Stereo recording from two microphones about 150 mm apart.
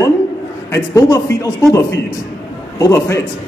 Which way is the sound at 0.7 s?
20° left (ahead or behind).